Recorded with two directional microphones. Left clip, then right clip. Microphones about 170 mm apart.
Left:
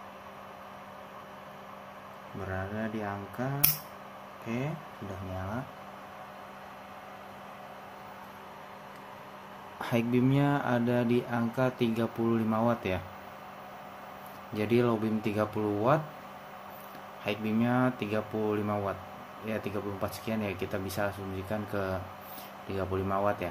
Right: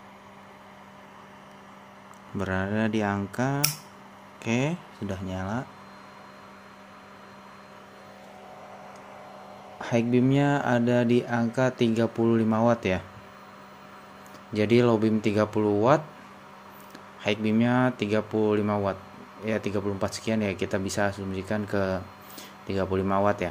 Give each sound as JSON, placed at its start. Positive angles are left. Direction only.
{"t": 2.4, "sound": "speech", "side_deg": -65}
{"t": 9.8, "sound": "speech", "side_deg": -20}
{"t": 14.5, "sound": "speech", "side_deg": -40}
{"t": 17.2, "sound": "speech", "side_deg": -40}